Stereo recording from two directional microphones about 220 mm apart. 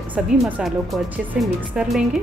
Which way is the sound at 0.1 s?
5° right (ahead or behind).